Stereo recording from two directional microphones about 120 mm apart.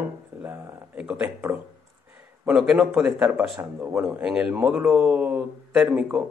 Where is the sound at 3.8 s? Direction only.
15° right (ahead or behind).